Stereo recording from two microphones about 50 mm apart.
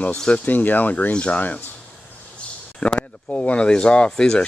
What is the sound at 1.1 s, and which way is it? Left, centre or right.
Speech, left.